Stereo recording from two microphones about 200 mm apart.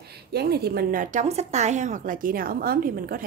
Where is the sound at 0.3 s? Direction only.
55° right (ahead or behind).